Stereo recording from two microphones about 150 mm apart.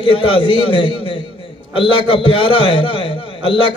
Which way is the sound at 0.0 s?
35° left (ahead or behind).